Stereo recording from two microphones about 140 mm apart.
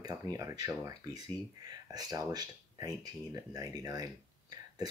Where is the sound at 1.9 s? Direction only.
25° right (ahead or behind).